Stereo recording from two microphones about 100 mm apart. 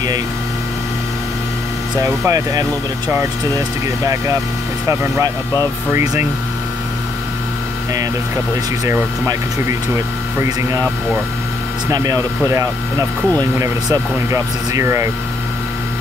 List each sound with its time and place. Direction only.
2.0 s speech: 35° right (ahead or behind)
8.8 s speech: 30° right (ahead or behind)
10.4 s speech: 30° right (ahead or behind)
11.9 s speech: 35° right (ahead or behind)